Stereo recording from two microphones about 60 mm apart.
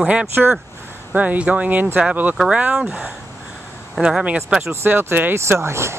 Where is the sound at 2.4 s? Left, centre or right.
Centre.